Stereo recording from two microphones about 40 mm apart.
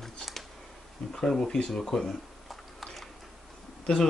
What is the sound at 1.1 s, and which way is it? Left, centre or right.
Speech, centre.